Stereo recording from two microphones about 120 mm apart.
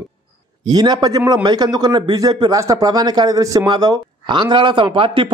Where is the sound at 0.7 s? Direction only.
35° right (ahead or behind).